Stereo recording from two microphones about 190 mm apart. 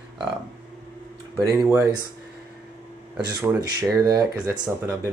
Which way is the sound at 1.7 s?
15° right (ahead or behind).